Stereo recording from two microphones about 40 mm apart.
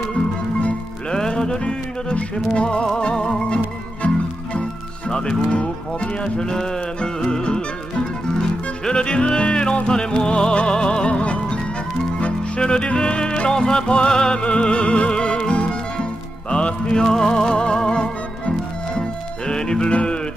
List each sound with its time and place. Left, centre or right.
1.1 s music: centre
5.5 s speech: left
6.5 s music: centre
19.9 s music: left